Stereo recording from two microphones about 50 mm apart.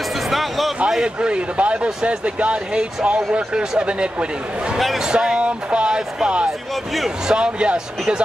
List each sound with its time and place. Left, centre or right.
0.3 s a sound: centre
0.8 s a man's voice: centre
4.7 s speech: centre
5.0 s a man's voice: centre